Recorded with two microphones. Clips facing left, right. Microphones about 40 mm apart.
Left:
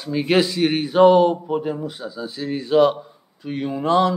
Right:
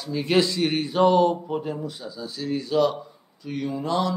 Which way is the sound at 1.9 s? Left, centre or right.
Left.